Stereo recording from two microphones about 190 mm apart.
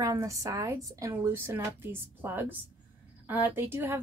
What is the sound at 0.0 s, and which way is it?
A woman's voice, 15° right (ahead or behind).